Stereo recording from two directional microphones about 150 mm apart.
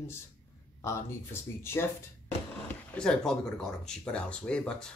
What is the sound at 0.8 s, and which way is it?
Speech, 15° left (ahead or behind).